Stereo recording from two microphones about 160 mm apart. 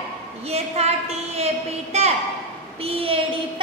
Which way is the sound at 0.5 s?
40° right (ahead or behind).